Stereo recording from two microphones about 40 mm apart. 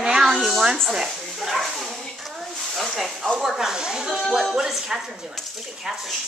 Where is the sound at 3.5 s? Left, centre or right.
Centre.